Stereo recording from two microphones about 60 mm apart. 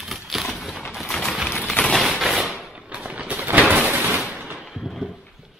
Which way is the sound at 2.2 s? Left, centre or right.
Centre.